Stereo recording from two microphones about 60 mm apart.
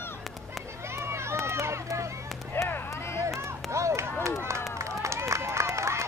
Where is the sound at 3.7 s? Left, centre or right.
Right.